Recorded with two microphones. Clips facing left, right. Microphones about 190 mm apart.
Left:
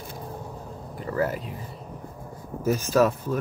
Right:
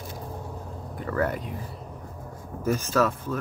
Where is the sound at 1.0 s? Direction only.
15° left (ahead or behind).